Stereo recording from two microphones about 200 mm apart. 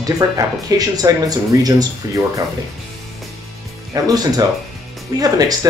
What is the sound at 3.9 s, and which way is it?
Speech, 20° right (ahead or behind).